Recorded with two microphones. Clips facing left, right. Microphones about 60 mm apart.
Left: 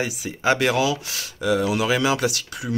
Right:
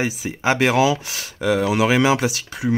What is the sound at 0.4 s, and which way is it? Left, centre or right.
Speech, right.